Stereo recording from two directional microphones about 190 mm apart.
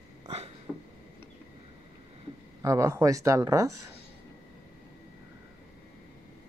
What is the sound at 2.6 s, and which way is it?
Speech, 15° right (ahead or behind).